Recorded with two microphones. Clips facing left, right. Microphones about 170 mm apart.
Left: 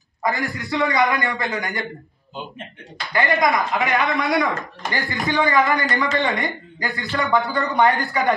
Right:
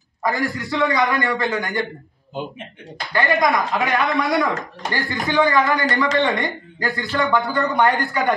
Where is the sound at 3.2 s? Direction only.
Centre (ahead or behind).